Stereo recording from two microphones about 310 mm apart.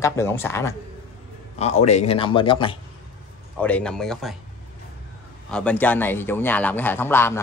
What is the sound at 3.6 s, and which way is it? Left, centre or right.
Speech, centre.